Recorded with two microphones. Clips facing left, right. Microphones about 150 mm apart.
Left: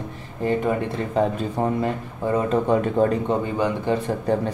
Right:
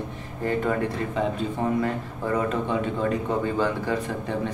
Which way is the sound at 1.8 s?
20° left (ahead or behind).